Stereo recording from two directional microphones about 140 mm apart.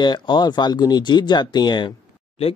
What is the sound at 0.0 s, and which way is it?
Speech, 30° left (ahead or behind).